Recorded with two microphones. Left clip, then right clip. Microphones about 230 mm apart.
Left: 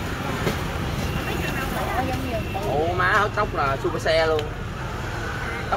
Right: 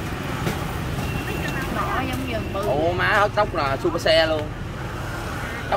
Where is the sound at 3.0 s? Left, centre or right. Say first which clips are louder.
Right 1 dB; right.